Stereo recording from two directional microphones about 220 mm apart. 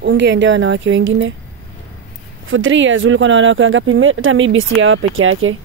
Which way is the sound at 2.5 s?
60° right (ahead or behind).